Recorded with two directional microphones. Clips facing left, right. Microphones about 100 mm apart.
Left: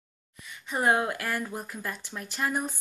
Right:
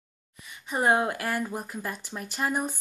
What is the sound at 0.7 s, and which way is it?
Speech, 15° right (ahead or behind).